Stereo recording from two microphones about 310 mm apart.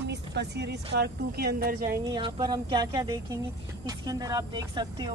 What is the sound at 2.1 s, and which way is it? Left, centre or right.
Speech, centre.